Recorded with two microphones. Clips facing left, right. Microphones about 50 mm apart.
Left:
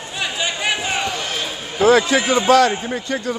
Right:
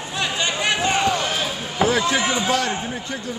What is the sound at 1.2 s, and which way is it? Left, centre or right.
Run, centre.